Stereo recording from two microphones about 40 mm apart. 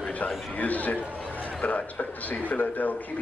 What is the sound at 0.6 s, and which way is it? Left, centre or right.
Speech, left.